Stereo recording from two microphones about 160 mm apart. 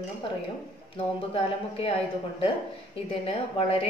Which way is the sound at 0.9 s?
35° left (ahead or behind).